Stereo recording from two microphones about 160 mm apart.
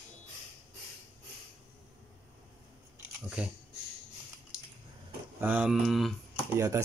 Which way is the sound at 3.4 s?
10° right (ahead or behind).